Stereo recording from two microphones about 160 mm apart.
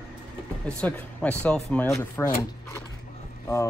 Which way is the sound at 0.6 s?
5° left (ahead or behind).